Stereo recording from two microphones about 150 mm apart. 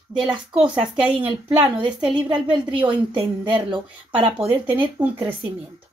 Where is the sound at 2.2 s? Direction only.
35° right (ahead or behind).